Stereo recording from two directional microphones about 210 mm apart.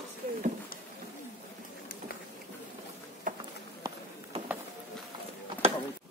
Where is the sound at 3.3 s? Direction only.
40° right (ahead or behind).